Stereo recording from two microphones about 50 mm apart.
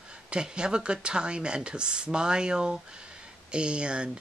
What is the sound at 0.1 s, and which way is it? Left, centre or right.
Speech, centre.